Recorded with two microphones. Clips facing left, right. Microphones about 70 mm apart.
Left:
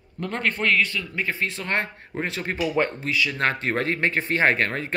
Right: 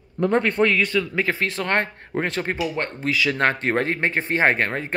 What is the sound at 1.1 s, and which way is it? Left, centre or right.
Speech, right.